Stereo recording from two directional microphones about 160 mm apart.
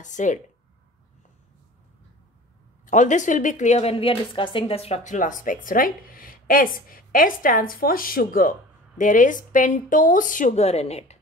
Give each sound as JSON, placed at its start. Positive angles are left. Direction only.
{"t": 0.0, "sound": "speech", "side_deg": 50}
{"t": 2.8, "sound": "a woman's voice", "side_deg": 50}